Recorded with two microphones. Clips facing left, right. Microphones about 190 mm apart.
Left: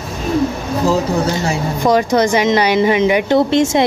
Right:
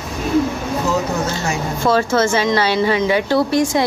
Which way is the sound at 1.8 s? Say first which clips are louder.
Left 3 dB; 15° left (ahead or behind).